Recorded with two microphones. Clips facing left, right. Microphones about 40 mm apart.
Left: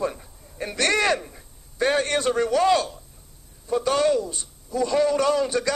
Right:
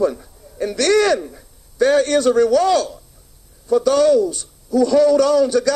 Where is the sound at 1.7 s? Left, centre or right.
Left.